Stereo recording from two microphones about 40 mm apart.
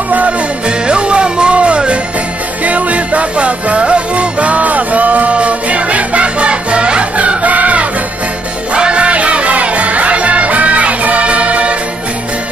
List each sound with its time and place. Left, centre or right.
0.7 s music: right
8.7 s music: right